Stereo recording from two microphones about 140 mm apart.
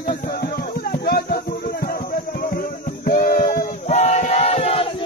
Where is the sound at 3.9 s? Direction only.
55° left (ahead or behind).